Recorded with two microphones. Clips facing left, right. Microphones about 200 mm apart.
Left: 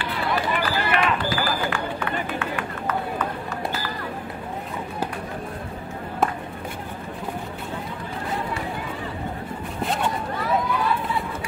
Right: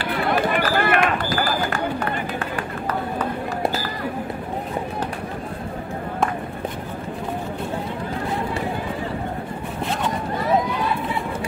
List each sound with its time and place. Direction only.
0.1 s run: 50° right (ahead or behind)